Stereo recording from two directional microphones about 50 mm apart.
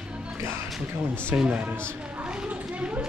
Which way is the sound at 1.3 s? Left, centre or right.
Right.